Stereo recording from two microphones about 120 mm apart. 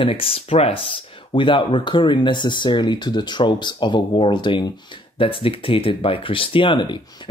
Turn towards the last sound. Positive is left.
turn(degrees=40)  # may be behind; listen again after turning